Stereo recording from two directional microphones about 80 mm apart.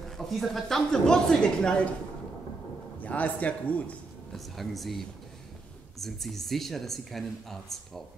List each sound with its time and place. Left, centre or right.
0.0 s speech: centre
3.0 s a man's voice: centre
4.3 s speech: centre